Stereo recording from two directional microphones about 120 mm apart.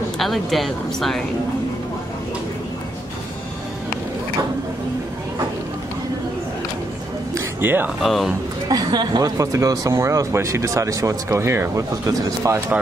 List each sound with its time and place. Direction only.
0.2 s speech: centre (ahead or behind)
7.3 s a sound: 15° right (ahead or behind)
8.0 s speech: centre (ahead or behind)
8.6 s speech: 35° right (ahead or behind)